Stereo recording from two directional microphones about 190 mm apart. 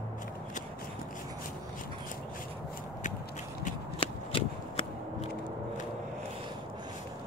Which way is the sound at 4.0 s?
30° left (ahead or behind).